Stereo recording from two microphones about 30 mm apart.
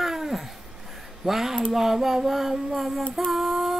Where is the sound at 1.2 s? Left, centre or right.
Centre.